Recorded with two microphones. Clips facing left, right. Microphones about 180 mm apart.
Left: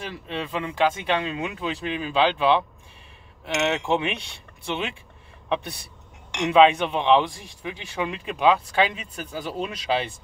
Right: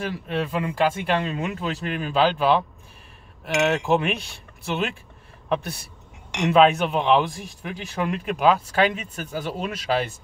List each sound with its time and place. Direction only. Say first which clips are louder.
0.0 s speech: right 5 dB; 5° right (ahead or behind)